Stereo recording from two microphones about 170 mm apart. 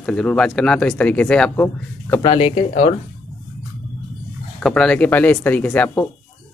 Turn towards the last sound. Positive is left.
turn(degrees=10)  # may be behind; listen again after turning